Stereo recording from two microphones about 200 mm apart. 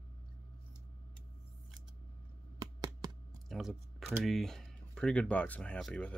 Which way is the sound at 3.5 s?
Centre (ahead or behind).